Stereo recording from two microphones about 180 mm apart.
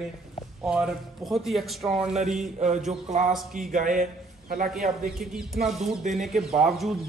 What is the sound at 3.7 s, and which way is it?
A man's voice, 45° right (ahead or behind).